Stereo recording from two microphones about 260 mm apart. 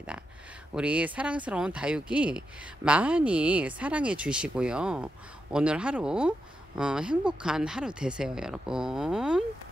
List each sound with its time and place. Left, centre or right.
0.7 s speech: centre